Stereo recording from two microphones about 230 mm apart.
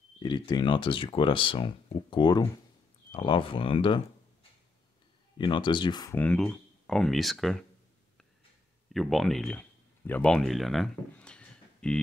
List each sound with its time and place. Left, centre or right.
0.2 s speech: centre
8.9 s speech: centre